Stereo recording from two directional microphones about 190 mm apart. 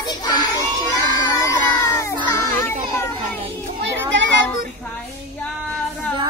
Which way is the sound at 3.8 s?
70° right (ahead or behind).